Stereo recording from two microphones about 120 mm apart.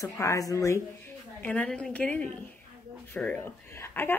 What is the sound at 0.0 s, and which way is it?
Speech, 25° left (ahead or behind).